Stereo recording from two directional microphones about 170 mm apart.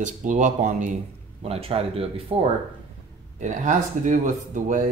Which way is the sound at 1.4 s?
35° right (ahead or behind).